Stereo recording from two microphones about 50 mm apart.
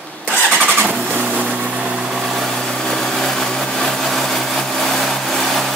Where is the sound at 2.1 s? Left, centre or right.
Centre.